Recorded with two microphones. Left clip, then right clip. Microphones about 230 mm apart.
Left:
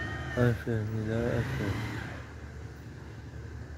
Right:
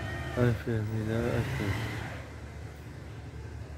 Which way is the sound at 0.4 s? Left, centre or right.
Centre.